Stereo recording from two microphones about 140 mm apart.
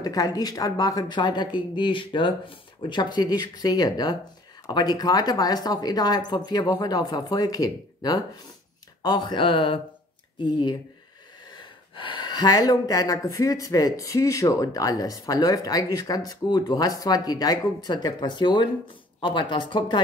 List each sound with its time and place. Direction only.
0.0 s speech: 25° left (ahead or behind)